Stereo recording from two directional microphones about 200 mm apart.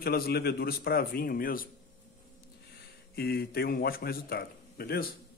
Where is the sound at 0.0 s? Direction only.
50° left (ahead or behind).